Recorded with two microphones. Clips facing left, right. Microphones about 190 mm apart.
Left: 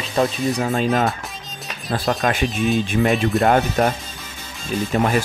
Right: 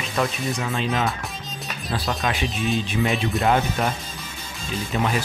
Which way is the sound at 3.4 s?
50° left (ahead or behind).